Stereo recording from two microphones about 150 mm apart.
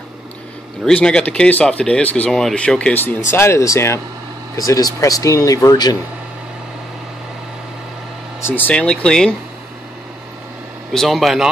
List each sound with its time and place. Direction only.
0.8 s speech: 5° left (ahead or behind); by 5.9 s 25° left (ahead or behind)
8.4 s speech: 15° left (ahead or behind)
10.9 s speech: centre (ahead or behind)